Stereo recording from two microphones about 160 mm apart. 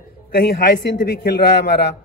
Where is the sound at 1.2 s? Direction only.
90° left.